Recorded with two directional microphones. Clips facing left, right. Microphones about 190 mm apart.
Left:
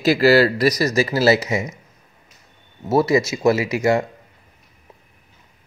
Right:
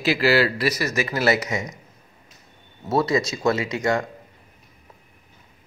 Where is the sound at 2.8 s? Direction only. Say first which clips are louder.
Left 4 dB; 25° left (ahead or behind).